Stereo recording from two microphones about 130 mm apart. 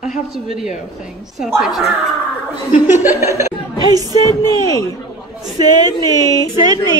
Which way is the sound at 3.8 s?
30° right (ahead or behind).